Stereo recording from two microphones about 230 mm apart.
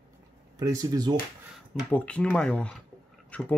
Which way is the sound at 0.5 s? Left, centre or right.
Centre.